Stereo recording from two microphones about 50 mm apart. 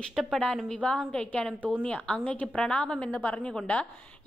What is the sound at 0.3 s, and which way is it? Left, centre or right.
A woman's voice, centre.